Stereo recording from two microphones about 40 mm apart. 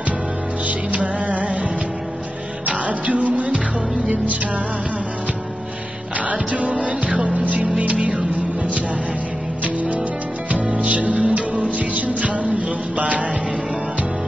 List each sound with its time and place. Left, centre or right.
0.7 s music: right
6.1 s music: right
7.1 s music: centre
7.8 s music: right
10.8 s music: right